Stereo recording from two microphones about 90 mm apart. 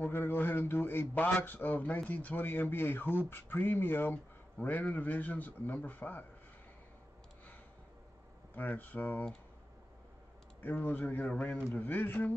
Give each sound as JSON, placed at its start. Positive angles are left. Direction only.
{"t": 0.1, "sound": "a man's voice", "side_deg": 25}
{"t": 8.5, "sound": "a man's voice", "side_deg": 20}
{"t": 10.6, "sound": "a man's voice", "side_deg": 20}